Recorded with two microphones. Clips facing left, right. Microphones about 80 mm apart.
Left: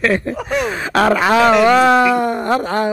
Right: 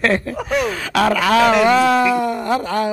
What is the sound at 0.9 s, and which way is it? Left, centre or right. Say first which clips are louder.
Speech: left 2 dB; left.